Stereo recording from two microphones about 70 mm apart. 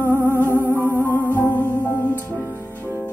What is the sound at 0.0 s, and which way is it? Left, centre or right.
Music, right.